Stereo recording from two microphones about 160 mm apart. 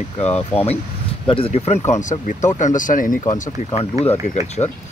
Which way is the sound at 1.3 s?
40° left (ahead or behind).